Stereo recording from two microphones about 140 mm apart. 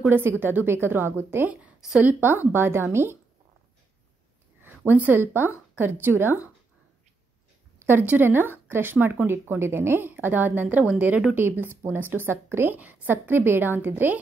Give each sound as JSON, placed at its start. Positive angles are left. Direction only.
{"t": 0.0, "sound": "a woman's voice", "side_deg": -15}
{"t": 4.6, "sound": "a woman's voice", "side_deg": -10}
{"t": 7.8, "sound": "a woman's voice", "side_deg": -15}